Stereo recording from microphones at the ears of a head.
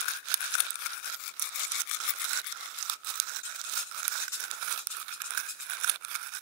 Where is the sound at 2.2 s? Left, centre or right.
Right.